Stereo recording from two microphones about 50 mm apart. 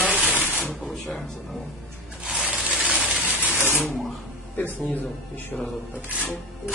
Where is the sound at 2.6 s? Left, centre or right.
Right.